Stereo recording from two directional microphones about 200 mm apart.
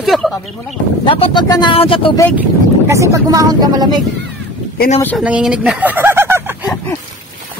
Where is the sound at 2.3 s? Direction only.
15° right (ahead or behind).